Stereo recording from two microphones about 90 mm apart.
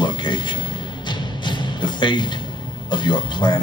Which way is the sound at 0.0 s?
60° left (ahead or behind).